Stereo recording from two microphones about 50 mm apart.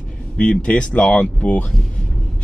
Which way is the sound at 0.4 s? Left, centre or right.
Left.